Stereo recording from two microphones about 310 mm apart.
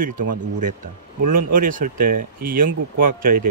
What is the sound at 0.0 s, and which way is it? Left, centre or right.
Speech, right.